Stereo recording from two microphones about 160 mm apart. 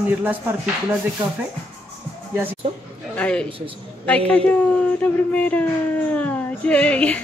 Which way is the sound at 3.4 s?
35° right (ahead or behind).